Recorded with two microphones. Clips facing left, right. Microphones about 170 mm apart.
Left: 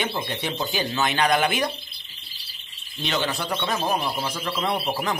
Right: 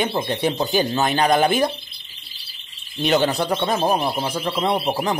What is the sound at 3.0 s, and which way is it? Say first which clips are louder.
Speech: right 8 dB; 45° right (ahead or behind).